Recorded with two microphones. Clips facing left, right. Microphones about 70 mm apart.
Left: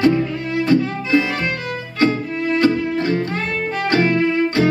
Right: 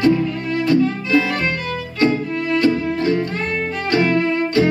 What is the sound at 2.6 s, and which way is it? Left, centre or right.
Music, left.